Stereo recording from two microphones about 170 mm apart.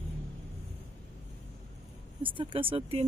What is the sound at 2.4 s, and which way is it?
Speech, 30° right (ahead or behind).